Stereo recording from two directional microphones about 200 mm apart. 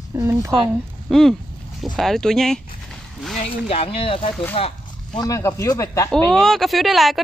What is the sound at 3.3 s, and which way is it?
Speech, 35° left (ahead or behind).